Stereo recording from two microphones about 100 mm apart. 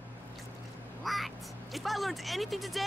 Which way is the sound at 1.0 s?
Centre (ahead or behind).